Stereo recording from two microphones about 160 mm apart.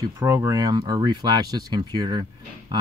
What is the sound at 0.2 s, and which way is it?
Speech, 15° right (ahead or behind).